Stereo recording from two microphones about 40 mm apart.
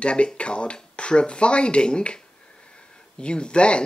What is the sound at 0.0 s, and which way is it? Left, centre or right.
Speech, left.